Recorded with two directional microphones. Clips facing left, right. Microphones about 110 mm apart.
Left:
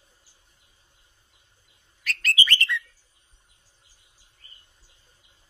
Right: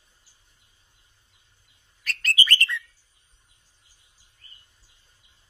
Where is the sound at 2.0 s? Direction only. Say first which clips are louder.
Even; 40° right (ahead or behind).